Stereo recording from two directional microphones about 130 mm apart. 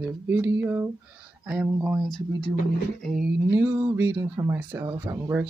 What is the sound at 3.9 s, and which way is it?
Speech, 20° right (ahead or behind).